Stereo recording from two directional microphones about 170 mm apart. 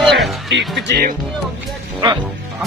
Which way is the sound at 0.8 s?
90° right.